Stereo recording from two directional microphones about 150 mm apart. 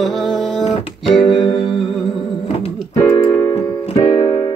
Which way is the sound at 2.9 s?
15° left (ahead or behind).